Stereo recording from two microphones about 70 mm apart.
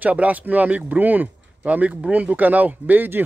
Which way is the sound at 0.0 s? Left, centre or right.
Right.